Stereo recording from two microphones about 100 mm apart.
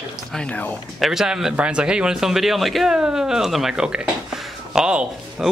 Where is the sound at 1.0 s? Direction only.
5° right (ahead or behind).